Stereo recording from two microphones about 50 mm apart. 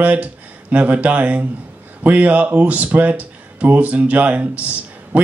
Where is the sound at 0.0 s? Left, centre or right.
Right.